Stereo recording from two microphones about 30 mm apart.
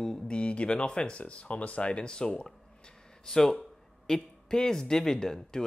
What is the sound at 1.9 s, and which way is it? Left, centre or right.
Speech, left.